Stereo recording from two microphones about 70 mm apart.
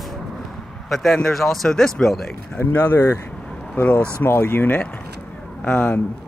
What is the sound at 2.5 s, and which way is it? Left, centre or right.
Speech, left.